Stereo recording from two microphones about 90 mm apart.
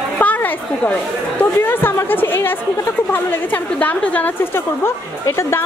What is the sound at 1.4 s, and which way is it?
A woman's voice, 25° left (ahead or behind).